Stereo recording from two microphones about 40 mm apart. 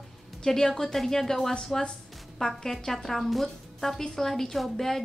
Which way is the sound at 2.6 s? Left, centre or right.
Centre.